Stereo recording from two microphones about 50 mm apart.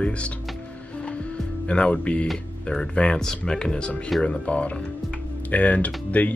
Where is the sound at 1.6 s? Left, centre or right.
Left.